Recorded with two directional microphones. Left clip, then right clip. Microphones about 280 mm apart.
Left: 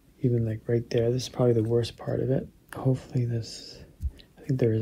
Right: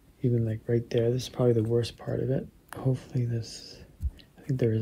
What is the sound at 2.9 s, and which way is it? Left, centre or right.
A man's voice, centre.